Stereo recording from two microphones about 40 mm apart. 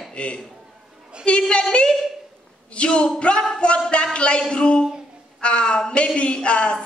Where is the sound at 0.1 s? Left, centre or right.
Left.